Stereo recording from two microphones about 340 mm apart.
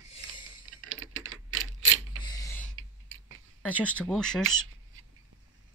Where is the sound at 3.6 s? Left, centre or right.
Centre.